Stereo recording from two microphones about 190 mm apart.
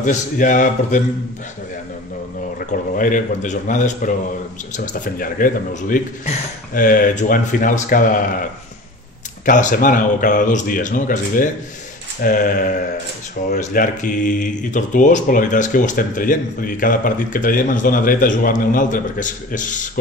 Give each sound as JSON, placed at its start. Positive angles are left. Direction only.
{"t": 0.0, "sound": "a man's voice", "side_deg": 40}
{"t": 3.0, "sound": "speech", "side_deg": 45}
{"t": 9.5, "sound": "speech", "side_deg": 40}